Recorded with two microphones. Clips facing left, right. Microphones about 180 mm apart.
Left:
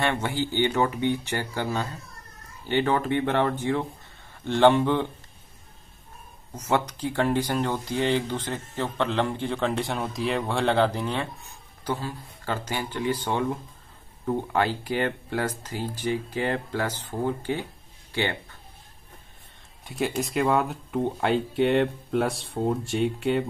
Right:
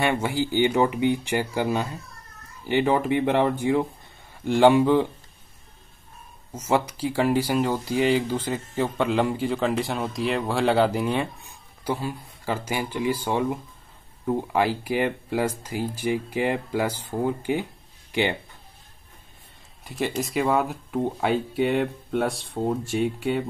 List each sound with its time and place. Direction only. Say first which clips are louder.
0.0 s speech: right 2 dB; 10° right (ahead or behind)
6.5 s speech: right 2 dB; 5° right (ahead or behind)
19.8 s speech: even; centre (ahead or behind)